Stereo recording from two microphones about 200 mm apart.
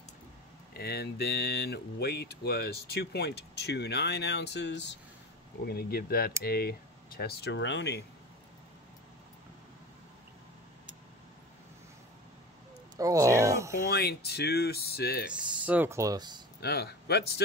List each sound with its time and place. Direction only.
0.7 s speech: 50° left (ahead or behind)
5.6 s speech: 50° left (ahead or behind)
12.9 s speech: 15° right (ahead or behind)
13.8 s speech: 50° left (ahead or behind)
15.3 s speech: 5° right (ahead or behind)
16.6 s speech: 55° left (ahead or behind)